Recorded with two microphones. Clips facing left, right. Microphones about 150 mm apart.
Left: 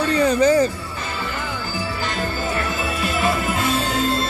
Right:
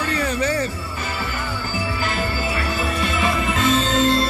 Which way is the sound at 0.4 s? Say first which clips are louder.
Left 9 dB; 30° left (ahead or behind).